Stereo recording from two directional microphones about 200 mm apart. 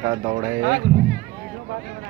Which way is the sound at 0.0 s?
25° right (ahead or behind).